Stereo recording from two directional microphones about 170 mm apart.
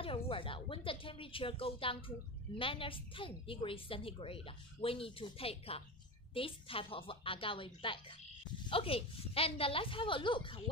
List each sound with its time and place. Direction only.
0.0 s a woman's voice: 30° left (ahead or behind)